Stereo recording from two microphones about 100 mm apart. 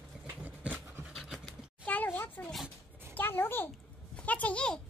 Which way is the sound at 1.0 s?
5° right (ahead or behind).